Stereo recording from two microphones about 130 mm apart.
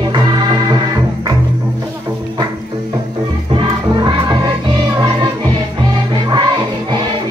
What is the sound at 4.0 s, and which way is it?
Music, 30° right (ahead or behind).